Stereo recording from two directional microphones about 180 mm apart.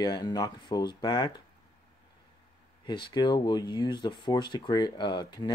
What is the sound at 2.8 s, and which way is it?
Speech, 25° left (ahead or behind).